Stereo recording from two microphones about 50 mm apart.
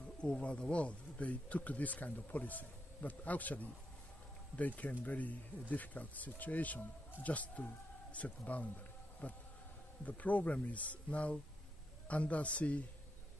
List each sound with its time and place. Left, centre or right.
0.2 s speech: left